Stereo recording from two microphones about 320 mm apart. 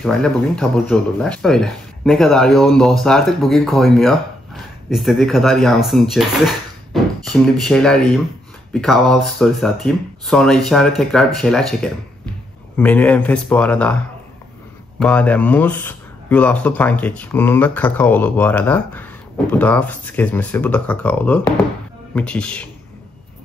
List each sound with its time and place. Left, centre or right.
0.0 s speech: centre